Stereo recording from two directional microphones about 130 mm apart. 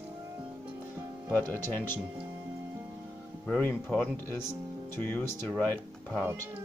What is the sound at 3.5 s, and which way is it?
Speech, 10° left (ahead or behind).